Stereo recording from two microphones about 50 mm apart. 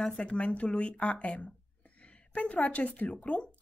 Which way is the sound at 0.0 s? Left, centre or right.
Centre.